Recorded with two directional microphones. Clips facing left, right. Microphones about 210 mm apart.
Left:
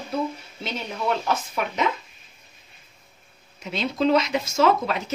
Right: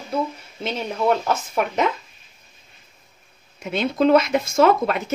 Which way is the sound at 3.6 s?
55° right (ahead or behind).